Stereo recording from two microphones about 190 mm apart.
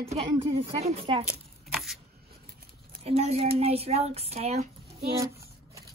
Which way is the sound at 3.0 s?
30° right (ahead or behind).